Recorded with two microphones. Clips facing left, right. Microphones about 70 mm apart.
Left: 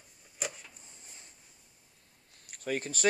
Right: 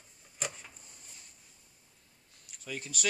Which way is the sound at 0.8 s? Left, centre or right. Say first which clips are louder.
Left 1 dB; left.